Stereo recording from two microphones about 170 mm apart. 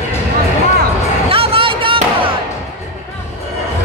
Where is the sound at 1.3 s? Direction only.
35° right (ahead or behind).